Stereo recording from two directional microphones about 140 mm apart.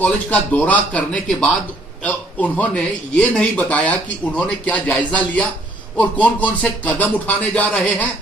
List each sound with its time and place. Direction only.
0.0 s speech: 10° left (ahead or behind)